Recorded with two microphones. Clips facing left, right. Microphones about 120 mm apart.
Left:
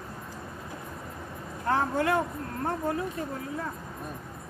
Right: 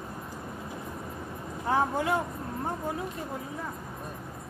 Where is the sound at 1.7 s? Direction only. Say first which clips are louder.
Left 1 dB; 15° right (ahead or behind).